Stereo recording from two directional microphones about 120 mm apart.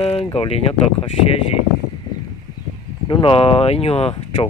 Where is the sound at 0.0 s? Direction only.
50° left (ahead or behind).